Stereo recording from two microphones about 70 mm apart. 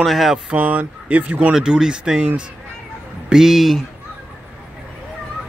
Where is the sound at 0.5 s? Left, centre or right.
Right.